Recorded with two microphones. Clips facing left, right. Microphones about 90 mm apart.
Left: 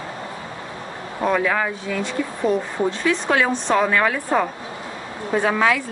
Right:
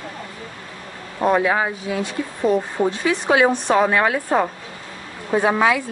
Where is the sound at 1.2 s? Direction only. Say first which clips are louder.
Right 2 dB; 15° right (ahead or behind).